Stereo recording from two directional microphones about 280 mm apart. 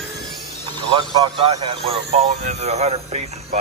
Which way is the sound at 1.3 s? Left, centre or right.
Centre.